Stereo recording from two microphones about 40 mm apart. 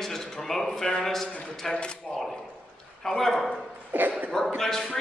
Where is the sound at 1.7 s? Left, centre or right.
Left.